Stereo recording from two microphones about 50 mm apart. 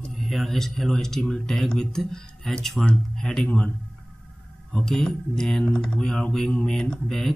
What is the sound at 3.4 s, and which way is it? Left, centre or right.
Speech, left.